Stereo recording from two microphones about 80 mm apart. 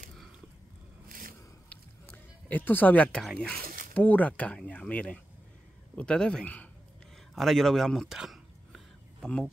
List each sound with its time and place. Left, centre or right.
2.4 s a man's voice: left
7.3 s a man's voice: centre
8.1 s a sound: centre